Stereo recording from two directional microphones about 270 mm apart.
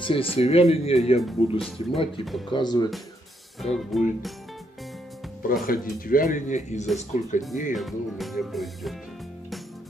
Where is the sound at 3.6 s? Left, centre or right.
Centre.